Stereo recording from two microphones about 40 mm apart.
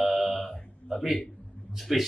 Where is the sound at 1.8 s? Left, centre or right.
Centre.